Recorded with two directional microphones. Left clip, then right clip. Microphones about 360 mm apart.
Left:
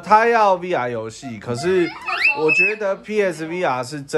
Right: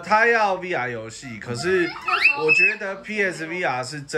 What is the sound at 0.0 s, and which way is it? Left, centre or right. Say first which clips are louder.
Speech: left 4 dB; centre.